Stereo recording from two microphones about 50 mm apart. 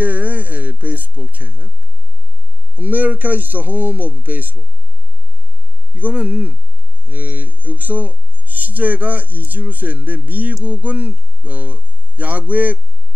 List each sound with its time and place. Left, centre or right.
0.0 s a sound: right
2.7 s speech: right
5.9 s speech: right